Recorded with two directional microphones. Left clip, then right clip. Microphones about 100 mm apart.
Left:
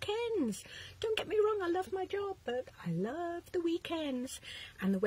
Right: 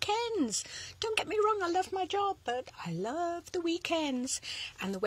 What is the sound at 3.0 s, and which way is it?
A woman's voice, 30° left (ahead or behind).